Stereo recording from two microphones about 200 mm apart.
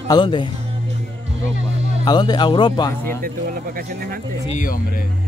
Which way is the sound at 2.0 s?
20° left (ahead or behind).